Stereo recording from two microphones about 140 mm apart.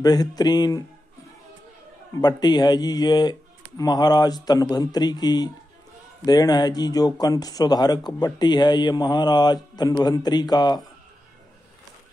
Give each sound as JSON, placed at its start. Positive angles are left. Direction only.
{"t": 0.0, "sound": "speech", "side_deg": 25}
{"t": 2.1, "sound": "speech", "side_deg": 30}